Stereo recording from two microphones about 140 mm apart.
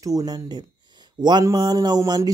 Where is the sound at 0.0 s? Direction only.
25° right (ahead or behind).